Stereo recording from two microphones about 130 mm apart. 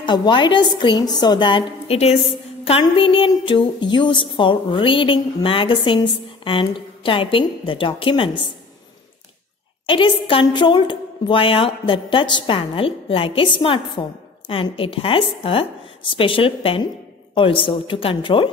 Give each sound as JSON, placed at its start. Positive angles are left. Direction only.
{"t": 0.0, "sound": "a woman's voice", "side_deg": 35}
{"t": 1.9, "sound": "a woman's voice", "side_deg": 55}
{"t": 2.8, "sound": "a woman's voice", "side_deg": 45}
{"t": 9.8, "sound": "a woman's voice", "side_deg": 40}